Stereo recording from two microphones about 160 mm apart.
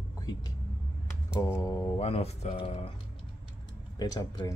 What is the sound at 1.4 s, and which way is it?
Speech, 20° left (ahead or behind).